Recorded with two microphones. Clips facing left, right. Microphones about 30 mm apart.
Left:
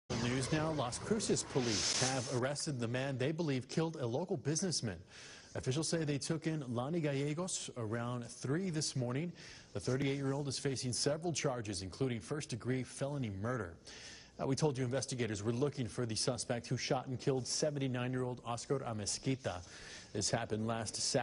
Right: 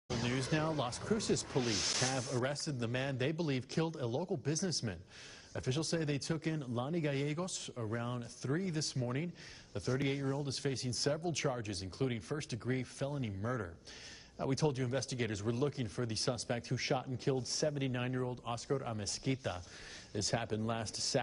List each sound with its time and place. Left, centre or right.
0.2 s speech: centre
7.5 s speech: centre